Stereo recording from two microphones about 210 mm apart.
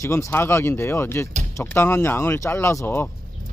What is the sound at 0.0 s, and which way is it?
Speech, 15° left (ahead or behind).